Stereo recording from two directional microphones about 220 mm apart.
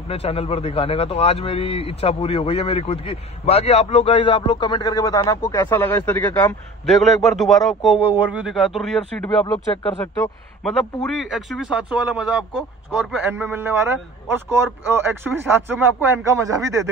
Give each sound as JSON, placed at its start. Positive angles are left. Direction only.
{"t": 0.1, "sound": "a man's voice", "side_deg": 25}
{"t": 6.9, "sound": "a man's voice", "side_deg": 0}
{"t": 10.6, "sound": "a man's voice", "side_deg": 0}